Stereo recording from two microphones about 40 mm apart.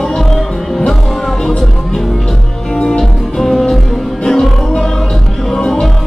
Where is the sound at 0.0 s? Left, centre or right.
Centre.